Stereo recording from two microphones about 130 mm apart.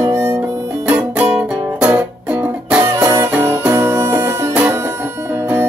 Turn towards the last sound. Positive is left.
turn(degrees=-15)  # may be behind; listen again after turning